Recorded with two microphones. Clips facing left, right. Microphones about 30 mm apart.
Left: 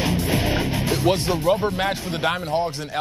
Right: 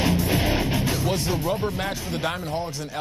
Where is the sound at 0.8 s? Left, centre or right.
Left.